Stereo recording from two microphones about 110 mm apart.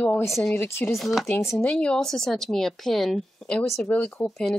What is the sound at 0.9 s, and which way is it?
Speech, centre (ahead or behind).